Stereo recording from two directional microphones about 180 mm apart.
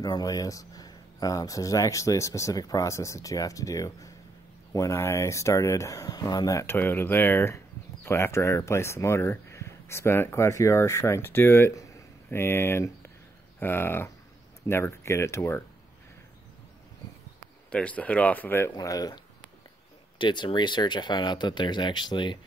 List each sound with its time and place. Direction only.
0.0 s speech: 20° left (ahead or behind)
17.6 s speech: 5° left (ahead or behind); by 22.4 s 25° left (ahead or behind)